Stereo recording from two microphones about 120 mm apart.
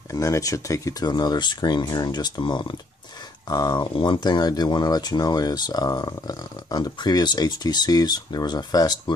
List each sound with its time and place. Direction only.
0.1 s speech: 30° left (ahead or behind)